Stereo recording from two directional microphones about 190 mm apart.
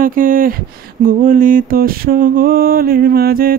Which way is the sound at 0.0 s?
45° right (ahead or behind).